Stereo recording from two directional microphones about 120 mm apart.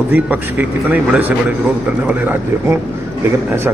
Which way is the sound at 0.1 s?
15° right (ahead or behind).